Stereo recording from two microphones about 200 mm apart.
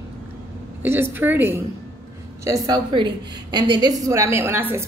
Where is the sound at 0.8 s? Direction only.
10° right (ahead or behind).